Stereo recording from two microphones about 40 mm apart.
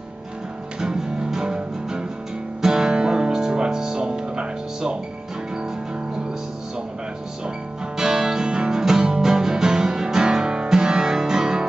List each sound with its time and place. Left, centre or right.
0.7 s music: centre
8.0 s music: centre